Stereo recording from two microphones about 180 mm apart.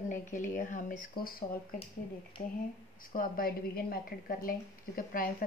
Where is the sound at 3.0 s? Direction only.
55° left (ahead or behind).